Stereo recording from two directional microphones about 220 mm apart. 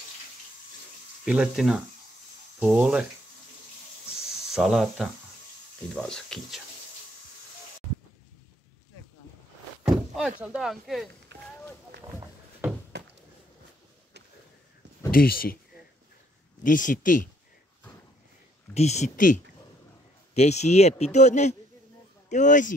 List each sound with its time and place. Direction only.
1.2 s speech: 5° right (ahead or behind)
4.5 s speech: centre (ahead or behind)
9.8 s door: centre (ahead or behind)
10.4 s speech: 5° right (ahead or behind)
12.9 s a sound: 50° right (ahead or behind)
15.0 s speech: 40° left (ahead or behind)
16.6 s speech: 35° left (ahead or behind)
18.7 s speech: 30° left (ahead or behind)